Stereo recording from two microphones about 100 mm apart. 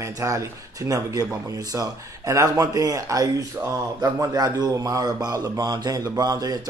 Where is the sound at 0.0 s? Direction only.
30° right (ahead or behind).